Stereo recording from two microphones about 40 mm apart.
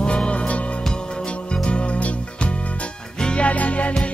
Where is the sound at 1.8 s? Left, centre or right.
Left.